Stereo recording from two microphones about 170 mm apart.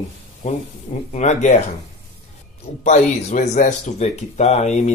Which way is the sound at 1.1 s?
45° left (ahead or behind).